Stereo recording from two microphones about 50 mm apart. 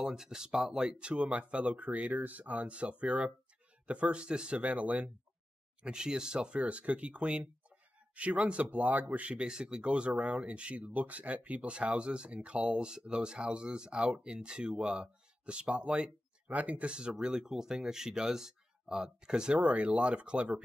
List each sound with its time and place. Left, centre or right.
0.0 s speech: centre; by 5.1 s right
5.8 s speech: centre